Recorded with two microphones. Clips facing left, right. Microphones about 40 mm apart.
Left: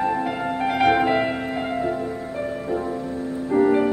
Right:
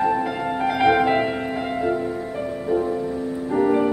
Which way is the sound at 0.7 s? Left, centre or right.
Centre.